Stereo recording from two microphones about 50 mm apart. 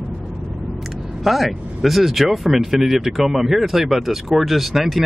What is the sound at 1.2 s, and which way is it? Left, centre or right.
Speech, centre.